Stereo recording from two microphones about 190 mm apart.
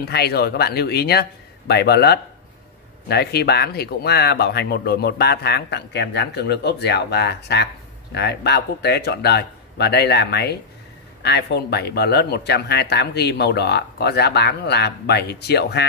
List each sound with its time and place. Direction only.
0.0 s speech: 55° left (ahead or behind)